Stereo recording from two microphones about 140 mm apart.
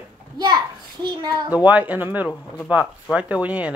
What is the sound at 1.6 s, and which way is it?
Speech, 10° right (ahead or behind).